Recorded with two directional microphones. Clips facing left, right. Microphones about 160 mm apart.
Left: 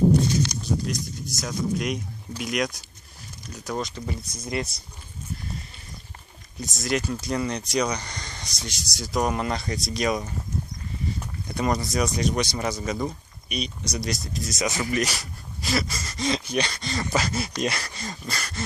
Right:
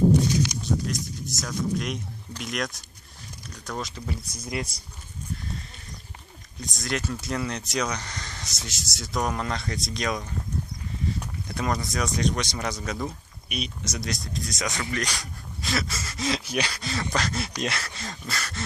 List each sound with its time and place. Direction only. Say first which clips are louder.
0.5 s a sound: even; 90° right
1.4 s speech: left 2 dB; 5° left (ahead or behind)
6.6 s speech: left 4 dB; centre (ahead or behind)